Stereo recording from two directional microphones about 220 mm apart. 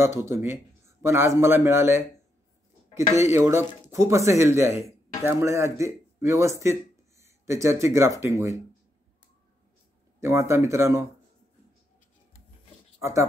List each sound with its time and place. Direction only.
0.0 s a man's voice: 10° right (ahead or behind)
3.2 s a man's voice: 10° right (ahead or behind)
10.2 s a man's voice: 15° right (ahead or behind)